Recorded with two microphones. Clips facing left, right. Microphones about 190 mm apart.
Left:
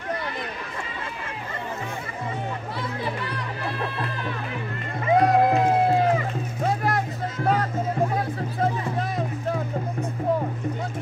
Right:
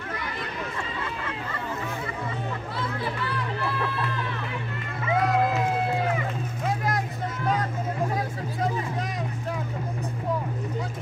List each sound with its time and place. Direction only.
5.0 s music: 40° left (ahead or behind)